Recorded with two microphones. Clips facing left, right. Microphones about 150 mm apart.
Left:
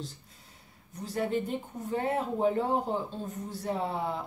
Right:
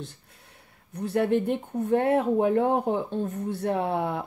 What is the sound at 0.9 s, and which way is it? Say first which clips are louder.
Speech: right 7 dB; 60° right (ahead or behind).